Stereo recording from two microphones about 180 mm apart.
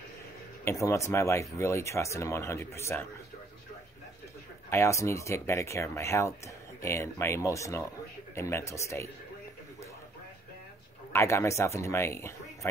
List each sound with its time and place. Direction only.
0.7 s speech: 15° left (ahead or behind)
4.6 s speech: 15° left (ahead or behind)
11.1 s speech: 15° left (ahead or behind)